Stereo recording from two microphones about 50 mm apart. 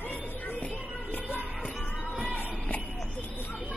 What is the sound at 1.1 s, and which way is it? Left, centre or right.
Music, left.